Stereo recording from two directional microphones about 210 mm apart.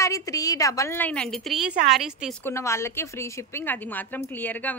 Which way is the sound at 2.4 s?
15° left (ahead or behind).